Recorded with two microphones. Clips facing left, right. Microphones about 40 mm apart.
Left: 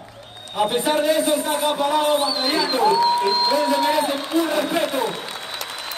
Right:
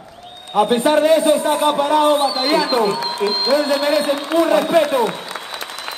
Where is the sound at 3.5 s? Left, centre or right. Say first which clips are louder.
Right 3 dB; right.